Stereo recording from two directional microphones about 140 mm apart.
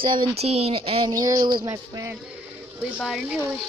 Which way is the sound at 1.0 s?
25° right (ahead or behind).